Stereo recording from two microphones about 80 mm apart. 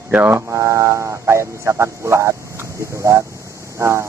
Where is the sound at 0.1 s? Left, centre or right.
Right.